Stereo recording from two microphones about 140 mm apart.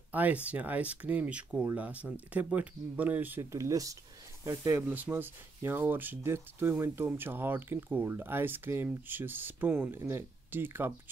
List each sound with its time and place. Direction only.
0.1 s speech: 10° right (ahead or behind)